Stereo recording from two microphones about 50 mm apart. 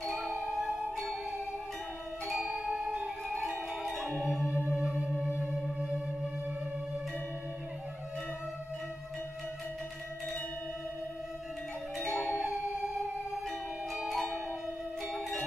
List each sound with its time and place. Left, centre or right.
0.0 s music: centre
2.2 s music: centre
4.7 s music: right
5.4 s theremin: centre
13.9 s music: centre